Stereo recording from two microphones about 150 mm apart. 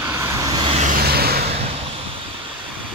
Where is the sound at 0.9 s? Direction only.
90° right.